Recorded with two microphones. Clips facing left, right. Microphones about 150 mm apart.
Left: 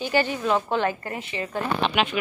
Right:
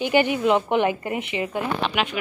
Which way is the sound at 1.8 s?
5° right (ahead or behind).